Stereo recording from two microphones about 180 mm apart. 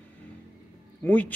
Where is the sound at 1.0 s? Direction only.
10° left (ahead or behind).